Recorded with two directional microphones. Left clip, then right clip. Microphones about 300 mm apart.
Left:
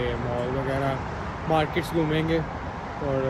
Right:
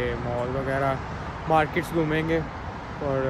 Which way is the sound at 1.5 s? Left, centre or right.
Centre.